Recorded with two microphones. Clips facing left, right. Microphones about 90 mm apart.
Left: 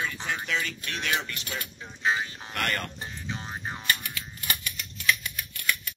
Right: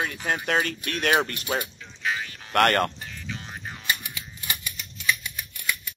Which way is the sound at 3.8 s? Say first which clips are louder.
Right 2 dB; 15° right (ahead or behind).